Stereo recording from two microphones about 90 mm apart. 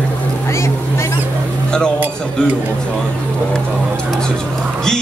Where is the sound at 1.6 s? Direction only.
10° left (ahead or behind).